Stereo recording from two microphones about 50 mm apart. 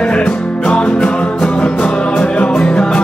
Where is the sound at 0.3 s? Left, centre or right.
Centre.